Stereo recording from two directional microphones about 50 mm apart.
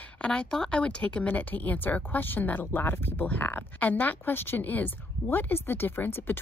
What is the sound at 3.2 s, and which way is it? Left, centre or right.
Speech, left.